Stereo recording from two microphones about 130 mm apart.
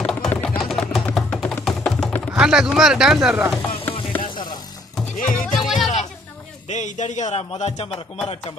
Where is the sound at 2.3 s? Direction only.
5° right (ahead or behind).